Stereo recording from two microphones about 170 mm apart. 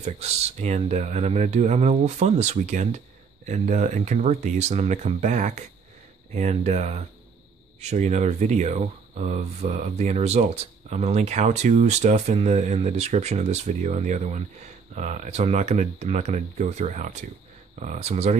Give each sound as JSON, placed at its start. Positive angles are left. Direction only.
{"t": 0.0, "sound": "speech", "side_deg": -40}